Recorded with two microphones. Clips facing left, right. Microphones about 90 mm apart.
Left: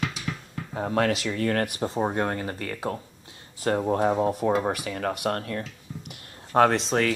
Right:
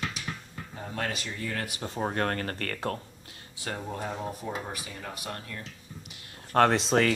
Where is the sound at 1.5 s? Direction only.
50° left (ahead or behind).